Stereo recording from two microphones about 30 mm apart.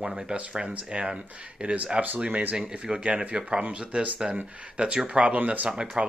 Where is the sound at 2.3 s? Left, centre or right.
Right.